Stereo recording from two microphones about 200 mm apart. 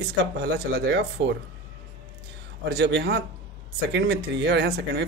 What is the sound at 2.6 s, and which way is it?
Speech, 60° right (ahead or behind).